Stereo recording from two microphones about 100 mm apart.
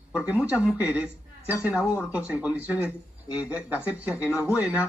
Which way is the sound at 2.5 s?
20° right (ahead or behind).